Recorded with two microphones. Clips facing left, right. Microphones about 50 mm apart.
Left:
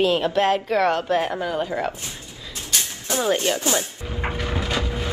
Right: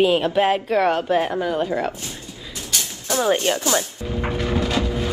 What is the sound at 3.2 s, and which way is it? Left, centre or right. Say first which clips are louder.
Speech: right 2 dB; right.